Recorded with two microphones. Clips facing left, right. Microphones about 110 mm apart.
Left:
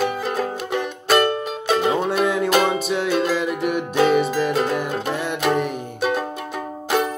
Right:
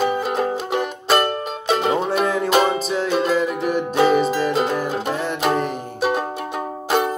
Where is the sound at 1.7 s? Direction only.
Centre (ahead or behind).